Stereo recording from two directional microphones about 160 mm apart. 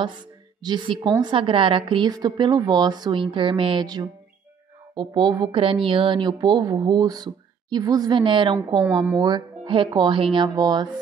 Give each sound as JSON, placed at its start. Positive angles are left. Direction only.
{"t": 0.6, "sound": "a woman's voice", "side_deg": -30}